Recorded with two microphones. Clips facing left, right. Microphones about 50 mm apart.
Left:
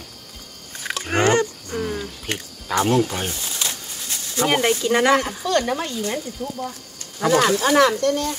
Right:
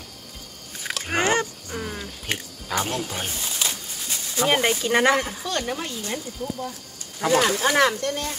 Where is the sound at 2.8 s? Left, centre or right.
Centre.